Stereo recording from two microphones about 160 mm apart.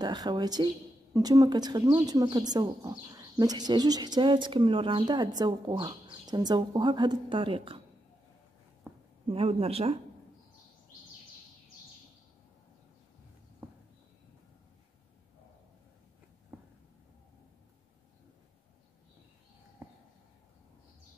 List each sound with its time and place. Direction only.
0.0 s speech: 25° right (ahead or behind)
8.8 s a sound: 15° right (ahead or behind)
9.3 s speech: 35° right (ahead or behind)